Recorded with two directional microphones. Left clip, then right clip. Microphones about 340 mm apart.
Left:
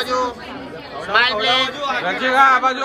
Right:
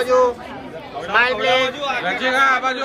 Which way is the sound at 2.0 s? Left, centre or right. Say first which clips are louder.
Left 3 dB; centre.